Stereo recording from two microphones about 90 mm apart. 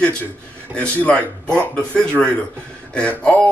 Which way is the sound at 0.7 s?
15° left (ahead or behind).